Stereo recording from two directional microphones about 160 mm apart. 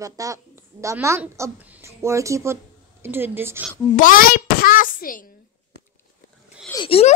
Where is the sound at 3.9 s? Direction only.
60° left (ahead or behind).